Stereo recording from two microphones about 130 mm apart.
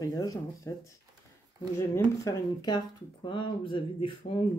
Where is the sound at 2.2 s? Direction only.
35° left (ahead or behind).